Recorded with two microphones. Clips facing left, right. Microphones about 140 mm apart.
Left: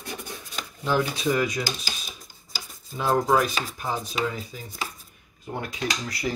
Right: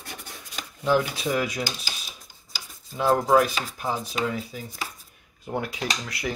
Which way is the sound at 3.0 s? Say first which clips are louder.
Right 2 dB; centre (ahead or behind).